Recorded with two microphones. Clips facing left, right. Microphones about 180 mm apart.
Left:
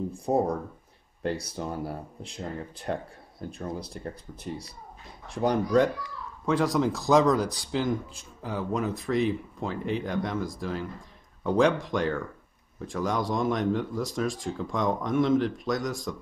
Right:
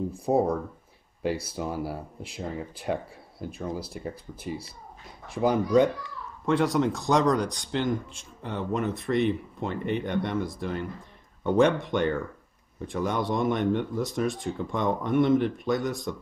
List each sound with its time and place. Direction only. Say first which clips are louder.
0.2 s speech: right 2 dB; centre (ahead or behind)
5.3 s speech: right 1 dB; centre (ahead or behind)